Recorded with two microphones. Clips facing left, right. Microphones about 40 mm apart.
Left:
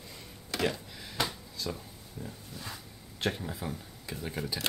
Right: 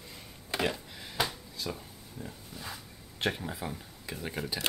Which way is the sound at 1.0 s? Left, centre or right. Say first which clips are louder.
Right 1 dB; centre.